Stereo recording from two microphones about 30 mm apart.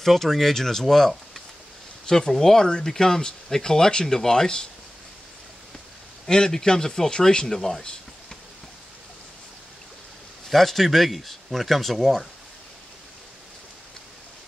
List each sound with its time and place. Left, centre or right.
0.0 s speech: centre; by 4.6 s left
6.2 s speech: left
7.4 s speech: centre
10.5 s speech: centre